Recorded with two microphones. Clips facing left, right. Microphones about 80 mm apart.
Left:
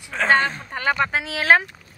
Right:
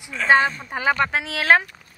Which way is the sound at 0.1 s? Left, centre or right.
Left.